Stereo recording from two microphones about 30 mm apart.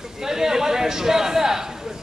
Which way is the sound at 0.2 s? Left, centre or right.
Centre.